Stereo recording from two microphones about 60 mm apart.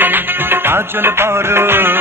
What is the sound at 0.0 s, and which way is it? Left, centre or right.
Music, right.